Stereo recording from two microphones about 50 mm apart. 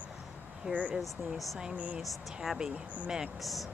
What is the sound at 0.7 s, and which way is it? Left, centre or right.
Speech, centre.